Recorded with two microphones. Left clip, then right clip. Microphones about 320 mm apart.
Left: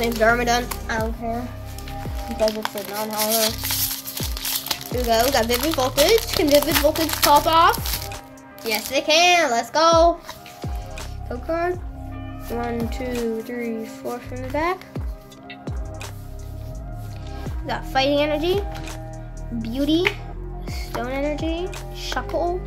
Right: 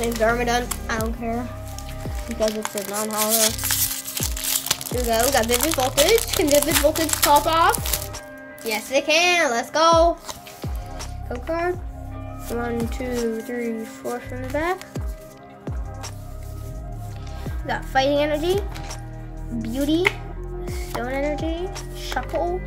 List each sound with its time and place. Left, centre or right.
0.0 s music: centre
2.4 s music: centre
3.0 s a child's voice: centre
3.3 s music: centre
4.2 s a child's voice: centre
12.4 s music: centre
17.6 s music: centre
19.6 s music: centre
20.6 s speech: centre